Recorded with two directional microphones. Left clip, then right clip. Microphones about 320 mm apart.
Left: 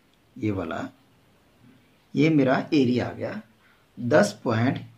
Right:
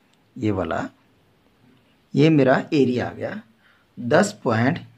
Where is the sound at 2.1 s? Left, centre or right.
Right.